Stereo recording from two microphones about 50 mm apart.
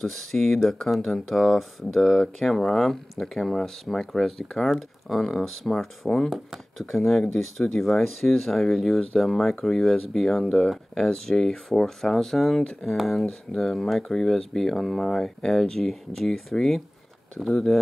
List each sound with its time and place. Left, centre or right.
0.0 s speech: centre